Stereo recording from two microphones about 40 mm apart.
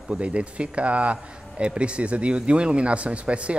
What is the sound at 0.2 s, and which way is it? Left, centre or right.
Speech, right.